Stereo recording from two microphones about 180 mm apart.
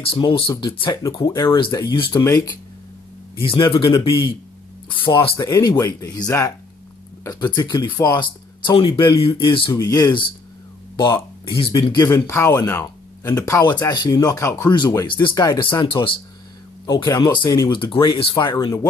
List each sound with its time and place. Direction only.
0.0 s speech: 30° left (ahead or behind)
11.0 s speech: 15° left (ahead or behind)
11.4 s speech: 30° left (ahead or behind)